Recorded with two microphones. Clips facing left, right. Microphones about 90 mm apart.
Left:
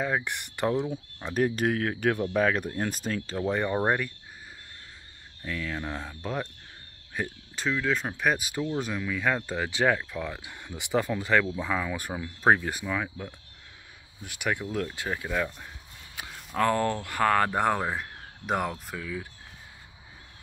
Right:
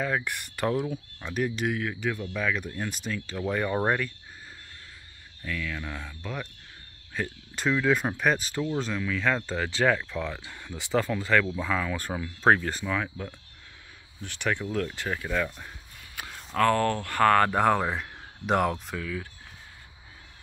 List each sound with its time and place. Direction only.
0.0 s speech: 20° left (ahead or behind)
1.3 s speech: 40° left (ahead or behind)
3.3 s speech: 20° left (ahead or behind)
5.4 s speech: 30° left (ahead or behind)
7.2 s speech: 15° left (ahead or behind)
7.5 s speech: 5° right (ahead or behind)
8.2 s speech: 10° left (ahead or behind)
16.2 s a sound: 20° left (ahead or behind)
16.5 s speech: 15° left (ahead or behind)